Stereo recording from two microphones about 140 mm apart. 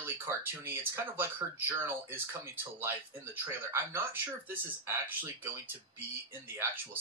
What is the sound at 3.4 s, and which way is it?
Speech, 15° right (ahead or behind).